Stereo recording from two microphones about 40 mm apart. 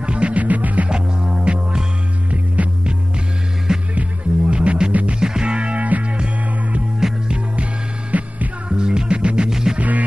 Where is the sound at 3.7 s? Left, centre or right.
Centre.